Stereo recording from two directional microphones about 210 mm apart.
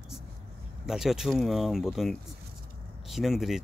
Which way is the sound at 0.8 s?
Centre (ahead or behind).